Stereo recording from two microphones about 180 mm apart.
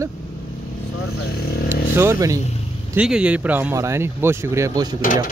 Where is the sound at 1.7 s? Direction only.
15° right (ahead or behind).